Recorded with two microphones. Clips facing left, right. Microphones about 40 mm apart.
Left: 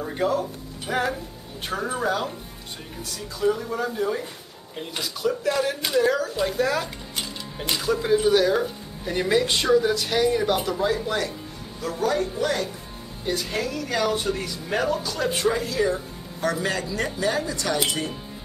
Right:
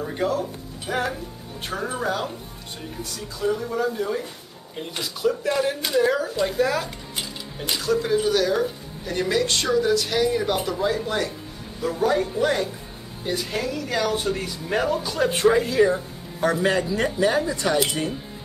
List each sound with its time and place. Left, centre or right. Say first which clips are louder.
0.0 s speech: even; centre
11.8 s speech: right 2 dB; centre
13.2 s speech: even; centre; by 17.7 s right